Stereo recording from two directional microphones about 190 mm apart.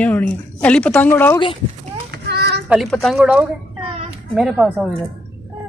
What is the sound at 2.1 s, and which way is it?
Children playing, 60° right (ahead or behind).